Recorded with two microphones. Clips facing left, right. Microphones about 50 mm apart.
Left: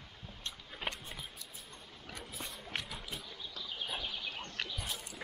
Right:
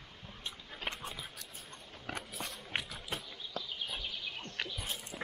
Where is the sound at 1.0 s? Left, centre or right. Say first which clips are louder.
Right 3 dB; right.